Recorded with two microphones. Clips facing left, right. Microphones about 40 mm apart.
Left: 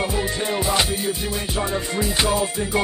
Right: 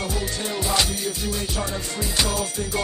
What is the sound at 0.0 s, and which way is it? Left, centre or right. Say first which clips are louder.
Music: left 4 dB; left.